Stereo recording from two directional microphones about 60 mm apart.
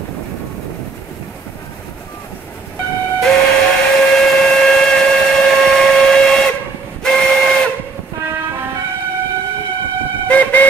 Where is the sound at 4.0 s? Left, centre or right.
Centre.